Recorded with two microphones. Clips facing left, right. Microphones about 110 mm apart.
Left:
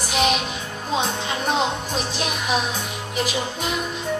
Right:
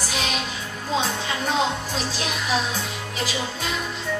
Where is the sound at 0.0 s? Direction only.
20° left (ahead or behind).